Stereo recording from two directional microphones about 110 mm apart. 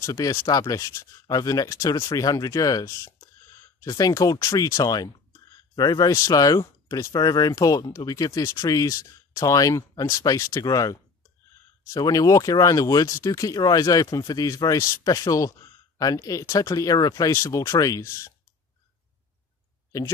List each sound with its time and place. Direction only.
0.0 s speech: 30° left (ahead or behind)